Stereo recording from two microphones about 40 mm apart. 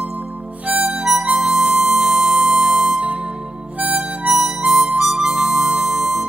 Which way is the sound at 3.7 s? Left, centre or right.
Right.